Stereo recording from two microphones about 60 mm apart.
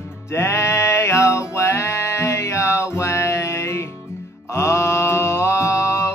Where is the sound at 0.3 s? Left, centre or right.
Left.